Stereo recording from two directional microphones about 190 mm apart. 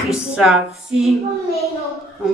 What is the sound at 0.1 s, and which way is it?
A man's voice, centre (ahead or behind).